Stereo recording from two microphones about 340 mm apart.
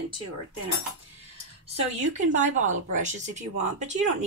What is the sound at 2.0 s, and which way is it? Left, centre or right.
Speech, right.